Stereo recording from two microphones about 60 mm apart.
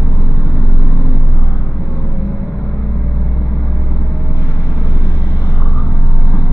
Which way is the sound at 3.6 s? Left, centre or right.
Left.